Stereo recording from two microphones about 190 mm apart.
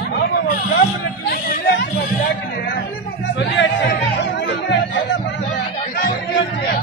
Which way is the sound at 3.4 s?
70° left (ahead or behind).